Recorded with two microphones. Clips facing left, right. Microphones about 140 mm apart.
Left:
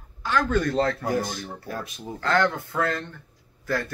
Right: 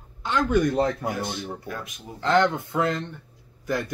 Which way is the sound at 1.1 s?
40° left (ahead or behind).